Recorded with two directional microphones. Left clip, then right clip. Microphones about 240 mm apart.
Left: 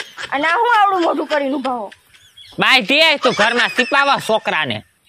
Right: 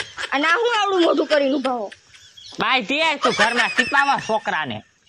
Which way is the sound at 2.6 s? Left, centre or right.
Left.